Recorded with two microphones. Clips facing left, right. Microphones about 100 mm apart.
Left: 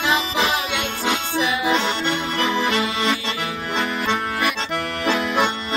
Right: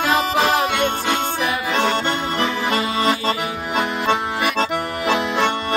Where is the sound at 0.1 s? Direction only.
45° right (ahead or behind).